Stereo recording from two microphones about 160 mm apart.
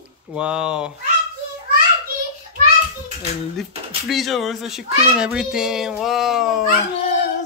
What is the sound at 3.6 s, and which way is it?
A child's voice, centre (ahead or behind).